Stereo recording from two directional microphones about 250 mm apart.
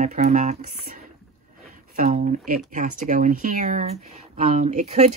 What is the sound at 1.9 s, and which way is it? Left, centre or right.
Speech, right.